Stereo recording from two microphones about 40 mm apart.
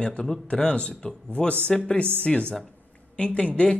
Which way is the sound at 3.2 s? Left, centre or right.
Left.